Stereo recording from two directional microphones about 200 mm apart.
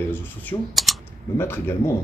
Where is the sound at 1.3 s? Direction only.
10° left (ahead or behind).